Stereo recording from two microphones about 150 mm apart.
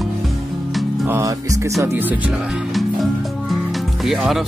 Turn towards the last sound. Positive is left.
turn(degrees=0)  # may be behind; listen again after turning